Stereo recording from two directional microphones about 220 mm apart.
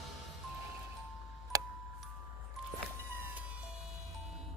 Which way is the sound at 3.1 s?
10° right (ahead or behind).